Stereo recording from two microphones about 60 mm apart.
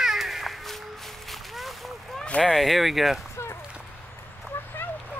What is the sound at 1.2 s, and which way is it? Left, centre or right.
Boat, centre.